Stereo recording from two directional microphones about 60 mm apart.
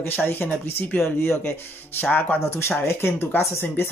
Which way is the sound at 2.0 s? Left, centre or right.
Left.